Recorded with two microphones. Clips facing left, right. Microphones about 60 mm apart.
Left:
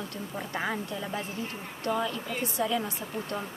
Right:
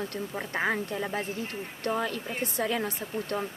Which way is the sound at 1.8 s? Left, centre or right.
Right.